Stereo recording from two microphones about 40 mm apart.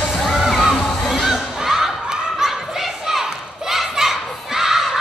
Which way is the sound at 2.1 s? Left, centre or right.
Centre.